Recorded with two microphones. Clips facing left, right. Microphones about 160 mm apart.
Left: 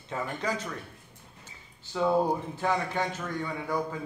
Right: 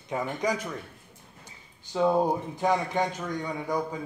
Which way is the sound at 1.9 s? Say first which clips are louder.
Right 2 dB; 20° right (ahead or behind).